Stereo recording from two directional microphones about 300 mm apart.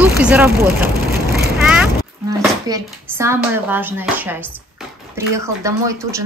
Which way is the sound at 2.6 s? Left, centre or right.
Centre.